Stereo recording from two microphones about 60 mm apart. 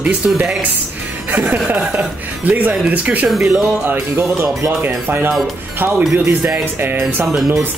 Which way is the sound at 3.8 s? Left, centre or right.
Right.